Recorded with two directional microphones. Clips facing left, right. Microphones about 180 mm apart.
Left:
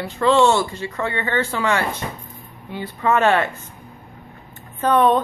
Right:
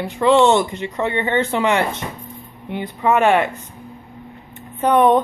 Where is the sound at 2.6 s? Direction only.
20° right (ahead or behind).